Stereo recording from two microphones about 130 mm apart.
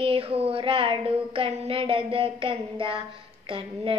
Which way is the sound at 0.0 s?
45° right (ahead or behind).